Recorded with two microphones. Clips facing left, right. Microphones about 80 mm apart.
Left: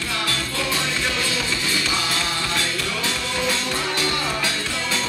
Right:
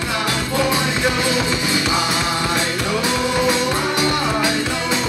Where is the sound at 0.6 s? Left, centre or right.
Centre.